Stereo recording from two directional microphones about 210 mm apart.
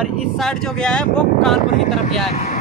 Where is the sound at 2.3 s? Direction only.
30° left (ahead or behind).